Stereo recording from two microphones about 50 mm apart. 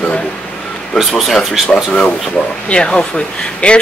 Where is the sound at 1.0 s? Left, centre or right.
Centre.